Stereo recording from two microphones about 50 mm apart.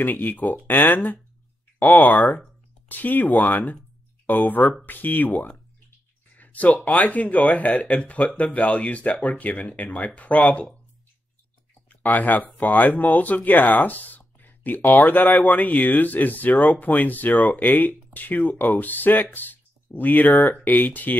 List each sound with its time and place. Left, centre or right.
0.0 s speech: left
11.9 s speech: left